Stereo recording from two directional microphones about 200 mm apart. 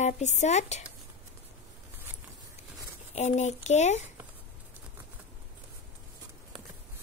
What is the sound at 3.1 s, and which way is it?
Speech, 35° left (ahead or behind).